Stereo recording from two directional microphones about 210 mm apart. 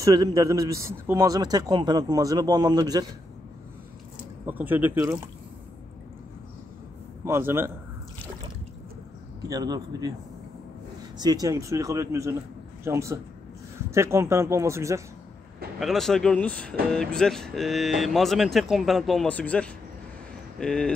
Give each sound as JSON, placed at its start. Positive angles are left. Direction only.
{"t": 0.0, "sound": "a man's voice", "side_deg": -15}
{"t": 4.5, "sound": "a man's voice", "side_deg": -10}
{"t": 7.2, "sound": "a man's voice", "side_deg": -10}
{"t": 9.4, "sound": "a man's voice", "side_deg": -15}
{"t": 11.1, "sound": "a man's voice", "side_deg": -20}
{"t": 15.8, "sound": "speech", "side_deg": 0}